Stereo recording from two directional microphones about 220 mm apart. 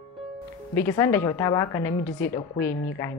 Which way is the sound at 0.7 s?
10° left (ahead or behind).